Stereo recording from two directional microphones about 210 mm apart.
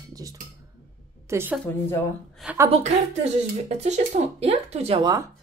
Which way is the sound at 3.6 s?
35° right (ahead or behind).